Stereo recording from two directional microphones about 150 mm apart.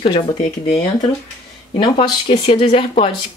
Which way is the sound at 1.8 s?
35° left (ahead or behind).